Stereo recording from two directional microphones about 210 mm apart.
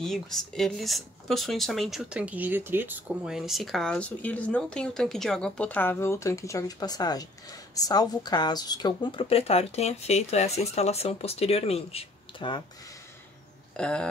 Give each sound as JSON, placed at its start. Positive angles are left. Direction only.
{"t": 0.0, "sound": "speech", "side_deg": 0}
{"t": 13.7, "sound": "speech", "side_deg": 5}